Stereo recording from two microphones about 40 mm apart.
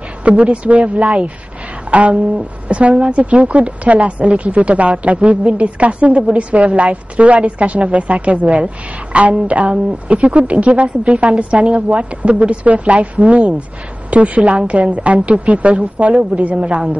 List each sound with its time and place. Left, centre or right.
0.2 s a woman's voice: right